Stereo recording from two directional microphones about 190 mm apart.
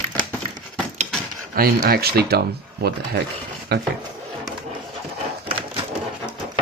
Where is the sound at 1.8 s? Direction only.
55° right (ahead or behind).